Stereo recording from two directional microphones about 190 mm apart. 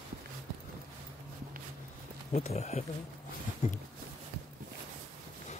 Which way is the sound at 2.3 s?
35° left (ahead or behind).